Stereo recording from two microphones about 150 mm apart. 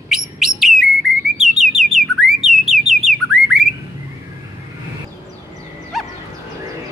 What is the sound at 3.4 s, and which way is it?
Bird, 90° right.